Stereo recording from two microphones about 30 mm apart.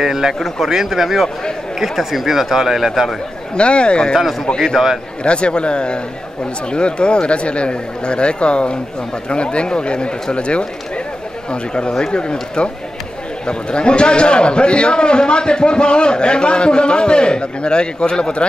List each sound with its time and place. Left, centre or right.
0.0 s speech: centre
3.5 s a man's voice: left
5.2 s a man's voice: left